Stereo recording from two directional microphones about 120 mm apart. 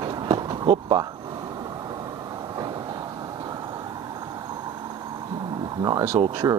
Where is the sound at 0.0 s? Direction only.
35° right (ahead or behind).